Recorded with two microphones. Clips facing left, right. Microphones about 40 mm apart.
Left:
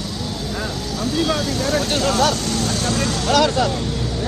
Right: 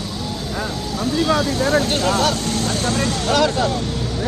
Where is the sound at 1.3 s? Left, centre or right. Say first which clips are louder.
Right 3 dB; right.